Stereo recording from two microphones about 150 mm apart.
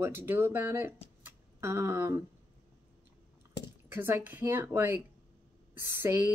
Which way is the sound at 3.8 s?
15° right (ahead or behind).